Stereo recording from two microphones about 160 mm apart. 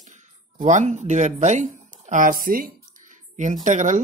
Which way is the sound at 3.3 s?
50° right (ahead or behind).